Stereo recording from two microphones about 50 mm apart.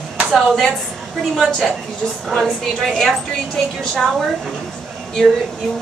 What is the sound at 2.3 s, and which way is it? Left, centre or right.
Speech, centre.